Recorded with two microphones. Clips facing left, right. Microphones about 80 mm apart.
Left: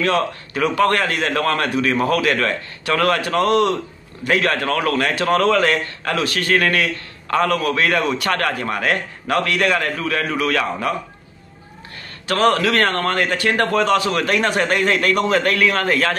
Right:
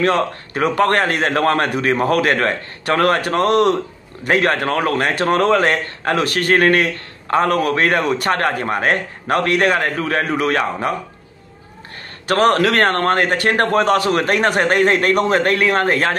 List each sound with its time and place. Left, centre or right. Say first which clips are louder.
0.0 s a man's voice: right 2 dB; right
12.3 s a man's voice: right 2 dB; right